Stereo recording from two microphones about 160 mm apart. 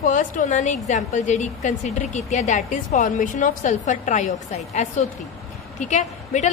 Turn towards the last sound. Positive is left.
turn(degrees=45)  # may be behind; listen again after turning